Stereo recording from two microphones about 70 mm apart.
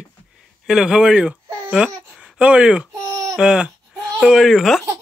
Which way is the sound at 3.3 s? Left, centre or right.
Centre.